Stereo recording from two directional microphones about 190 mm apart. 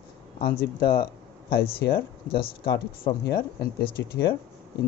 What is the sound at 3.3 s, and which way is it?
Speech, 60° left (ahead or behind).